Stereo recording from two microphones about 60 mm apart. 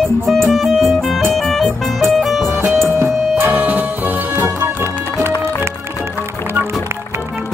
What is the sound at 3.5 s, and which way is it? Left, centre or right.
Music, right.